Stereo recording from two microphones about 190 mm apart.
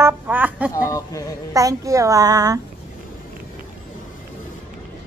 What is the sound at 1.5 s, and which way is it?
A child's voice, 15° right (ahead or behind).